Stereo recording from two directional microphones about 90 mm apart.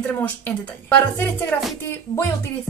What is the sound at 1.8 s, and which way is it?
Speech, 25° left (ahead or behind).